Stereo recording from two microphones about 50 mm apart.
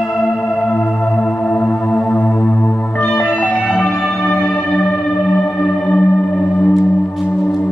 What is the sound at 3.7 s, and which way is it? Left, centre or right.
Music, left.